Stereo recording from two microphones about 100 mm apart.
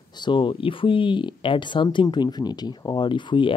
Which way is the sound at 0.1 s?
50° left (ahead or behind).